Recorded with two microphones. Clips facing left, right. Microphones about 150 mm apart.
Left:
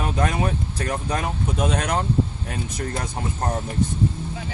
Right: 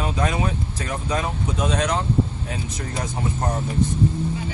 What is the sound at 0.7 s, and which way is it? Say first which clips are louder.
Speech: even; 55° left (ahead or behind).